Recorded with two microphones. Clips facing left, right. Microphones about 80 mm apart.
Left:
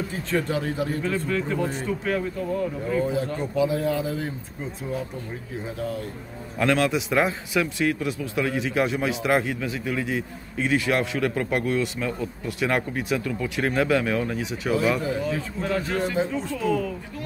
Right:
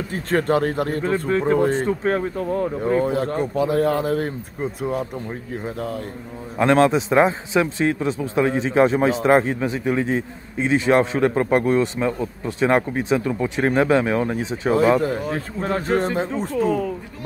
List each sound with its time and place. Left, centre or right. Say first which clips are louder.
0.1 s speech: right 9 dB; right
1.0 s speech: right 6 dB; right
1.7 s speech: right 6 dB; right
6.6 s a man's voice: right 6 dB; right